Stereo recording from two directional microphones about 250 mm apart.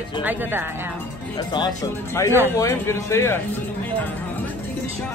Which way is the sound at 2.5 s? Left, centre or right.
Centre.